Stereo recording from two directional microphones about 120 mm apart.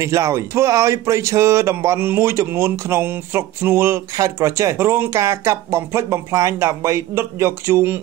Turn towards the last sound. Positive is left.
turn(degrees=-20)  # may be behind; listen again after turning